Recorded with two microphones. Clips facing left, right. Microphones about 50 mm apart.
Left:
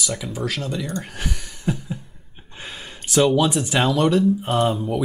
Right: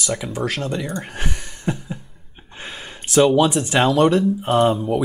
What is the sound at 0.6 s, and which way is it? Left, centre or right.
Speech, right.